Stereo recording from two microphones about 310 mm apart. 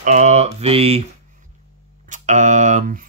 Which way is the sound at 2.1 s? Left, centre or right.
Right.